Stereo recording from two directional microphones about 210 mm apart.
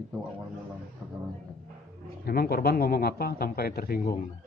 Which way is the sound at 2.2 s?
45° left (ahead or behind).